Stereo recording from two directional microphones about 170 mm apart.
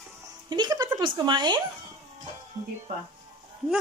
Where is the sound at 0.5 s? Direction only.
25° right (ahead or behind).